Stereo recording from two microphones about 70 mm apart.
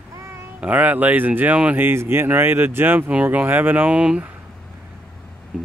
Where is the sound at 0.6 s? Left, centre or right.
Right.